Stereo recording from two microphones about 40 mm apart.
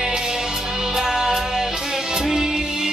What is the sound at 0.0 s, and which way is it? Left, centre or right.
Music, centre.